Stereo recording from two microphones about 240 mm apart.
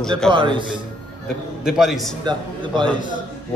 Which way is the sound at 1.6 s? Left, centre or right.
Centre.